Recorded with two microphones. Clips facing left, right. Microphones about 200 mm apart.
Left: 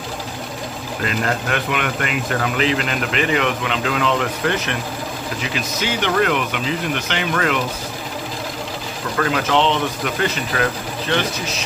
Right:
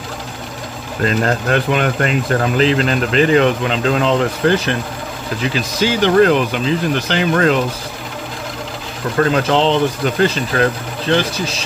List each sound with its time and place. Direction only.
1.0 s speech: 35° right (ahead or behind)
9.2 s speech: 35° right (ahead or behind)